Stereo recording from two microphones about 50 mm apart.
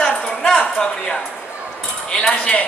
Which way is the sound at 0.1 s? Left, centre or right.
Centre.